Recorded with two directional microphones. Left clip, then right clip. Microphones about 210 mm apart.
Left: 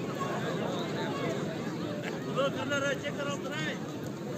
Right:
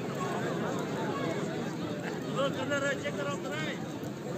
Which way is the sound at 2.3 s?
50° left (ahead or behind).